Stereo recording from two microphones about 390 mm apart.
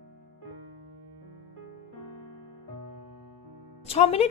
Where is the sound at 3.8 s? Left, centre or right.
Centre.